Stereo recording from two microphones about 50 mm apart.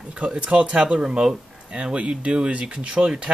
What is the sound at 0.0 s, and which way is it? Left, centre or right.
Speech, centre.